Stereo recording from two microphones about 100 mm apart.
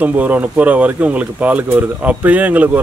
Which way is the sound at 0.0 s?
15° right (ahead or behind).